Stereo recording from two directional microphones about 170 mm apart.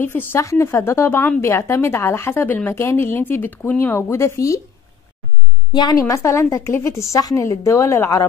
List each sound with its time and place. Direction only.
0.0 s a woman's voice: 10° left (ahead or behind)
5.7 s a woman's voice: 25° left (ahead or behind)